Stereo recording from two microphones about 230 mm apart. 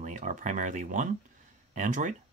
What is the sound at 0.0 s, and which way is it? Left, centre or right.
Speech, right.